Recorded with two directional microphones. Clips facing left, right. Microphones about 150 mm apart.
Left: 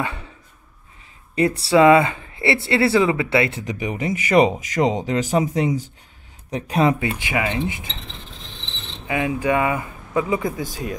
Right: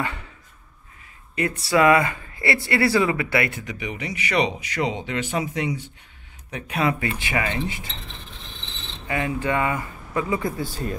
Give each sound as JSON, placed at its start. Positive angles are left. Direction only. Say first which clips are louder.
{"t": 0.0, "sound": "a sound", "louder": "left 2 dB", "side_deg": 20}
{"t": 1.3, "sound": "speech", "louder": "left 5 dB", "side_deg": 30}
{"t": 3.6, "sound": "speech", "louder": "left 6 dB", "side_deg": 40}
{"t": 7.0, "sound": "speech", "louder": "left 2 dB", "side_deg": 20}
{"t": 9.0, "sound": "speech", "louder": "left 3 dB", "side_deg": 15}